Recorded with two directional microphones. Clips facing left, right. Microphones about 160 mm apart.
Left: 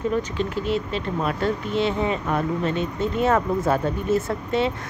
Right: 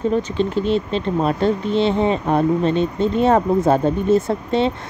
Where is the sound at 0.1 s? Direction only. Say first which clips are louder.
Right 5 dB; 25° right (ahead or behind).